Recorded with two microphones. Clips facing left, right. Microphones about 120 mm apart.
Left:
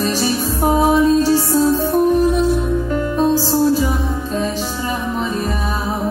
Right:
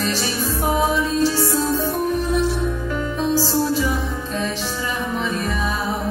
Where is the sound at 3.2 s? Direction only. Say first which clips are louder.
Left 5 dB; 40° left (ahead or behind).